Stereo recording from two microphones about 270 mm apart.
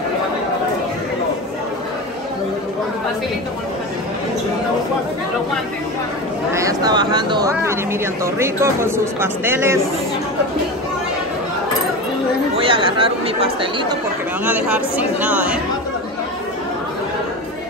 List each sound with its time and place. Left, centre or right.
6.5 s speech: centre
12.5 s speech: centre
14.4 s speech: centre